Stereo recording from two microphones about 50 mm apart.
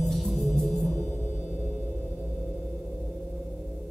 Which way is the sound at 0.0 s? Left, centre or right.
Centre.